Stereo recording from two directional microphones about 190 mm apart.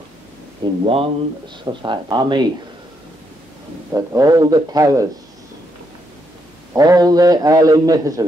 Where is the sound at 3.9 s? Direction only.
20° right (ahead or behind).